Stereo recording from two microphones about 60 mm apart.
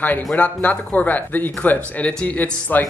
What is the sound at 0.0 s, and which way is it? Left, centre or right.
Speech, left.